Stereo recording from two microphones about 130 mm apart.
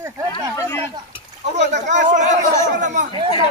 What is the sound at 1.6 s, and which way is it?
Speech, 60° right (ahead or behind).